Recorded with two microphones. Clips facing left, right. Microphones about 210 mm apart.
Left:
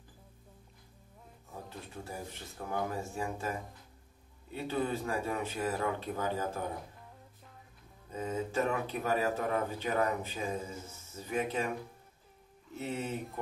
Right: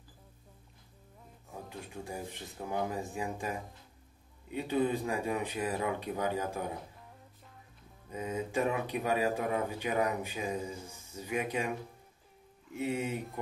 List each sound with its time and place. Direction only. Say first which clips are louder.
1.7 s speech: right 3 dB; 15° right (ahead or behind)
8.1 s speech: even; 15° right (ahead or behind)
12.7 s speech: right 3 dB; 15° right (ahead or behind)